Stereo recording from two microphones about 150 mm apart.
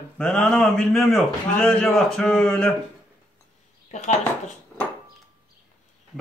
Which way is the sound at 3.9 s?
50° left (ahead or behind).